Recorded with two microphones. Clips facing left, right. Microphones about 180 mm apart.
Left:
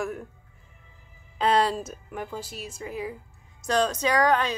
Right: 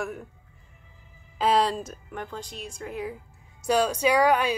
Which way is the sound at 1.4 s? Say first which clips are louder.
Even; centre (ahead or behind).